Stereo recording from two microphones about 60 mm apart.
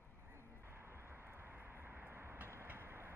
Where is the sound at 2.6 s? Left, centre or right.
Right.